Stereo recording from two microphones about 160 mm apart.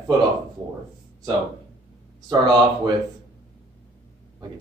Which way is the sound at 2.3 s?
25° right (ahead or behind).